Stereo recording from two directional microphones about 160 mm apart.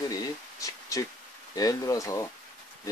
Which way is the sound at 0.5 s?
20° left (ahead or behind).